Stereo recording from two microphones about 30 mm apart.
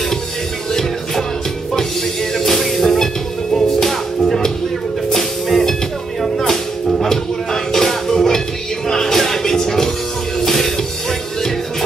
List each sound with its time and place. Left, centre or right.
2.3 s music: centre